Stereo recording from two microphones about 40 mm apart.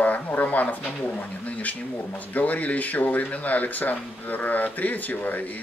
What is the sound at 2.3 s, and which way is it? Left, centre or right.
Speech, left.